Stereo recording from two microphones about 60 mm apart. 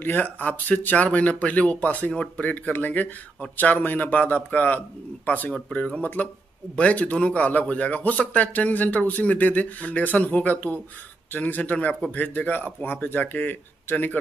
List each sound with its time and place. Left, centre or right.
0.0 s a man's voice: left